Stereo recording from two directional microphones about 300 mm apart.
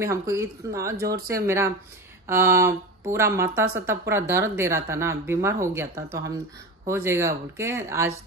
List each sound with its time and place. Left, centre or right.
0.0 s speech: centre
1.0 s speech: right
1.3 s speech: centre